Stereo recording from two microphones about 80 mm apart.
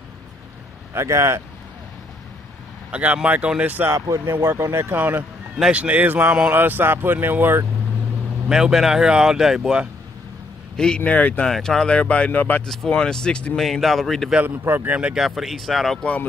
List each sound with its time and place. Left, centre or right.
0.9 s speech: right
2.9 s speech: centre
3.9 s speech: right
4.9 s speech: right
8.5 s speech: centre
11.0 s speech: centre
11.5 s speech: centre
12.6 s speech: centre
14.6 s speech: right
15.1 s speech: centre
16.0 s speech: centre